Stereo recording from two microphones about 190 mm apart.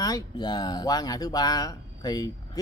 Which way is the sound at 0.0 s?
20° left (ahead or behind).